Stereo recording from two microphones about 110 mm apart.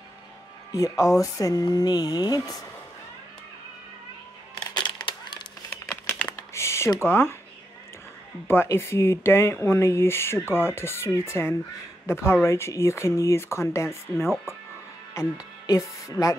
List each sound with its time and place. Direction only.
0.7 s speech: 30° left (ahead or behind)
4.8 s a sound: 45° left (ahead or behind)
5.7 s crumpling: 15° left (ahead or behind)
6.3 s typing: 25° left (ahead or behind)
7.0 s speech: 20° left (ahead or behind)
8.5 s speech: 20° left (ahead or behind)
16.2 s speech: 15° left (ahead or behind)